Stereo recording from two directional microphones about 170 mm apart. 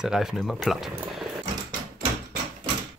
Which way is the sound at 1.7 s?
60° right (ahead or behind).